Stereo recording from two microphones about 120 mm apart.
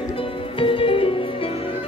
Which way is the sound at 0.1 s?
45° left (ahead or behind).